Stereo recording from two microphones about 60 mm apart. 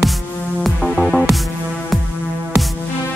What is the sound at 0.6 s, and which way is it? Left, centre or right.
Music, centre.